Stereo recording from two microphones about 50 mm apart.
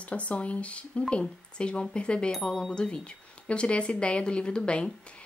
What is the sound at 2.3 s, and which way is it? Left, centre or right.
Speech, centre.